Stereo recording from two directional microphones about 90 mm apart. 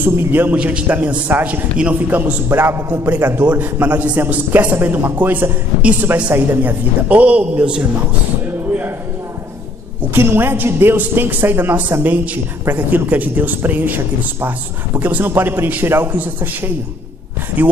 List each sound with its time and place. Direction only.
0.0 s a man's voice: 25° right (ahead or behind)
10.1 s a man's voice: 25° right (ahead or behind)